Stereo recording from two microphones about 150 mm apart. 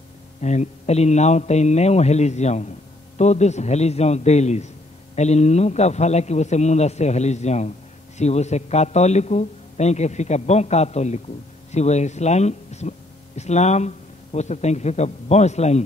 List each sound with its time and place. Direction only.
0.4 s a man's voice: 50° left (ahead or behind)